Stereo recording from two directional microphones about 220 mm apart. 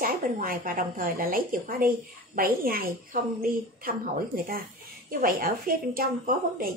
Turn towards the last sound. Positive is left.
turn(degrees=-40)  # may be behind; listen again after turning